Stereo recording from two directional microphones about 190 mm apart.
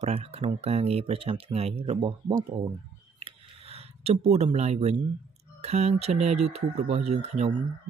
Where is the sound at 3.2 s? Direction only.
30° right (ahead or behind).